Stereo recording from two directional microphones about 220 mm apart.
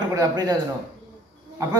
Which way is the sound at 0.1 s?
15° right (ahead or behind).